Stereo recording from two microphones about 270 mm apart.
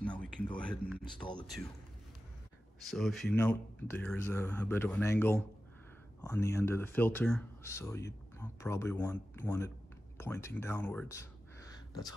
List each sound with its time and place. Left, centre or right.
0.0 s a sound: centre
1.0 s speech: centre
2.8 s speech: centre